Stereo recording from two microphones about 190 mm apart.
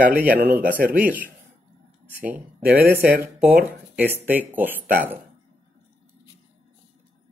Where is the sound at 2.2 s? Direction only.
5° right (ahead or behind).